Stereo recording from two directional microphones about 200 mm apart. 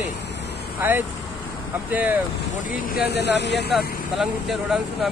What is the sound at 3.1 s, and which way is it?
Speech, 55° left (ahead or behind).